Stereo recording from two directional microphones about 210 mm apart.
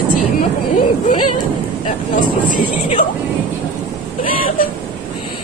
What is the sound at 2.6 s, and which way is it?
Speech, 30° left (ahead or behind).